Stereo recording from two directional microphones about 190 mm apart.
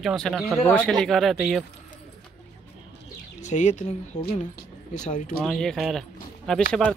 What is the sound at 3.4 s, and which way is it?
Speech, 40° left (ahead or behind).